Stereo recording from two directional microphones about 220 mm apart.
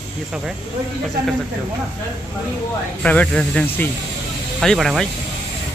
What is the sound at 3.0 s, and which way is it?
A man's voice, 5° left (ahead or behind).